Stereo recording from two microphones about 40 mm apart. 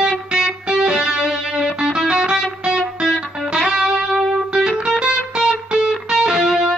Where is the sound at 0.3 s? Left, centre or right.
Centre.